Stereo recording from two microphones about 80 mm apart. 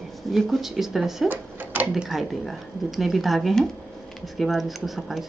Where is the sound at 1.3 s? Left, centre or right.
Right.